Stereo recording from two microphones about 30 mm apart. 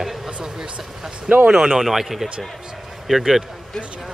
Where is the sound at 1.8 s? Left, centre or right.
Centre.